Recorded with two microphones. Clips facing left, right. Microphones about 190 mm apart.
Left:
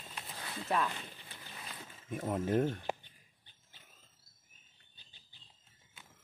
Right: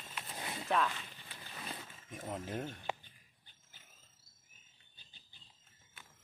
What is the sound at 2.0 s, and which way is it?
Speech, 60° left (ahead or behind).